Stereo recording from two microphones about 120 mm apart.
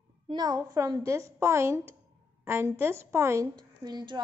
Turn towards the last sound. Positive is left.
turn(degrees=-35)  # may be behind; listen again after turning